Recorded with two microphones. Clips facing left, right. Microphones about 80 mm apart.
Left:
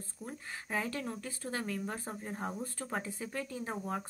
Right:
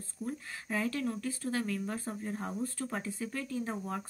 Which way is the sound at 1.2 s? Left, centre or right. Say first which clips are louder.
Right 4 dB; left.